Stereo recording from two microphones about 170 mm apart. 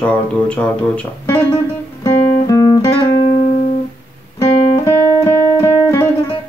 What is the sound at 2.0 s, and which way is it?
Guitar, 20° left (ahead or behind).